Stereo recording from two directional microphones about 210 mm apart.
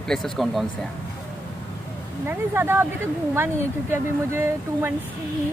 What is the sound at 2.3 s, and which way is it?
A woman's voice, 10° right (ahead or behind).